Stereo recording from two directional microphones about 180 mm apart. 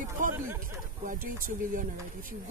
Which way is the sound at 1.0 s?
50° right (ahead or behind).